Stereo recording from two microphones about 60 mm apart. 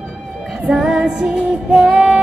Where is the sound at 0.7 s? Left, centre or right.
Centre.